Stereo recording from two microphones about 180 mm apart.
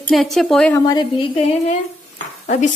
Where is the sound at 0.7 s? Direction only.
20° left (ahead or behind).